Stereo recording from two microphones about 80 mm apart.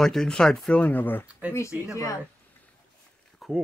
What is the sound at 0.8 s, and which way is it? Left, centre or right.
Speech, left.